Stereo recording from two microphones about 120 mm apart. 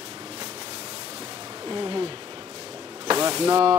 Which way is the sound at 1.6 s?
55° right (ahead or behind).